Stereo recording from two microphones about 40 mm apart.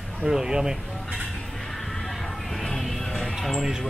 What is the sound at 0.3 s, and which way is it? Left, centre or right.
Speech, centre.